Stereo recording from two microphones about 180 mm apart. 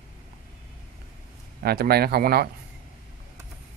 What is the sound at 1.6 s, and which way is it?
Speech, 60° right (ahead or behind).